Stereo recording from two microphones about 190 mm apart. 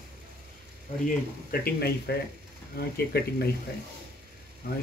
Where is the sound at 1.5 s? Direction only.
55° left (ahead or behind).